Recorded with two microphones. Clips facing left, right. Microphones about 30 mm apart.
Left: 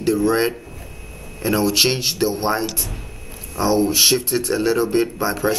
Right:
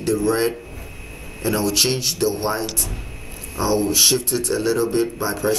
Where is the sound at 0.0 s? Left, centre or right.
Centre.